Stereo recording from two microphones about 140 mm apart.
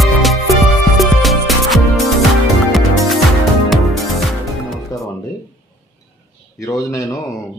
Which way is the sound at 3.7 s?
Centre (ahead or behind).